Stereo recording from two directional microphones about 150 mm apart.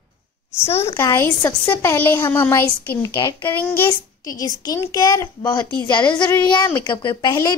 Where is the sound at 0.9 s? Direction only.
20° left (ahead or behind).